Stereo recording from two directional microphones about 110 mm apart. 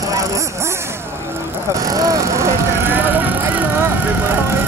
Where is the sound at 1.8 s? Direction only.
30° right (ahead or behind).